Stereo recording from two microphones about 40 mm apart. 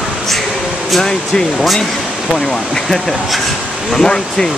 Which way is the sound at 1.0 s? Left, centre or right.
Centre.